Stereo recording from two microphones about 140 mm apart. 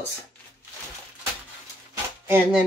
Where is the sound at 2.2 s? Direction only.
15° right (ahead or behind).